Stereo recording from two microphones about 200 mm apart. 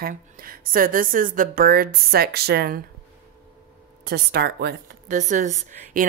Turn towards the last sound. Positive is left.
turn(degrees=-35)  # may be behind; listen again after turning